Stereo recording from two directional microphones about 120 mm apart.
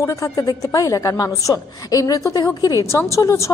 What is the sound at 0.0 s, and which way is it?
A woman's voice, 25° left (ahead or behind).